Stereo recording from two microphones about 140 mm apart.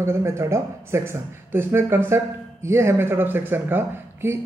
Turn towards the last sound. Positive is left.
turn(degrees=-15)  # may be behind; listen again after turning